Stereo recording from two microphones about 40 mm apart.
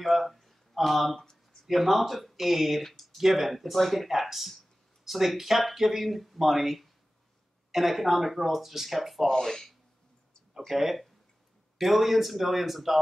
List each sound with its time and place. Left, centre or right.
0.0 s speech: centre
9.3 s speech: centre
10.8 s speech: centre